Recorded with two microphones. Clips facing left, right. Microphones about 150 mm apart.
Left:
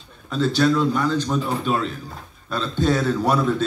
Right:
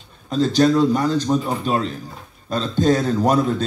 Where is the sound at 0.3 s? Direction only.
40° right (ahead or behind).